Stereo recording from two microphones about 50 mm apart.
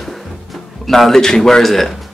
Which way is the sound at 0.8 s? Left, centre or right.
Centre.